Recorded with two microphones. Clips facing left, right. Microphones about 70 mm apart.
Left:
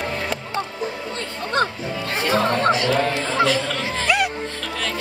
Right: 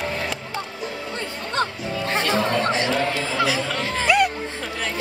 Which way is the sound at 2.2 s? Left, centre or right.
Left.